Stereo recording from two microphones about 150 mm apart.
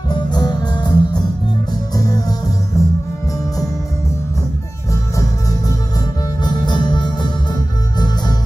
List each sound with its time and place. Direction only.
0.1 s music: 30° left (ahead or behind)
5.1 s music: 25° left (ahead or behind)